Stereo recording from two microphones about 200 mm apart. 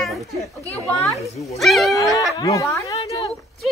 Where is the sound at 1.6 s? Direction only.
Centre (ahead or behind).